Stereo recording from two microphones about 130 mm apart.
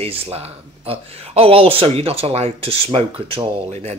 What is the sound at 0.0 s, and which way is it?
Speech, 50° right (ahead or behind).